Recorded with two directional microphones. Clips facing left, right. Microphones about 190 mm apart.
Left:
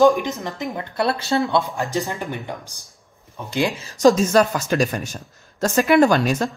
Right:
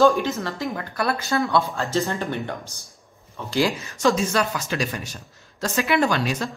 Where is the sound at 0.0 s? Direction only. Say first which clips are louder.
Left 2 dB; 15° left (ahead or behind).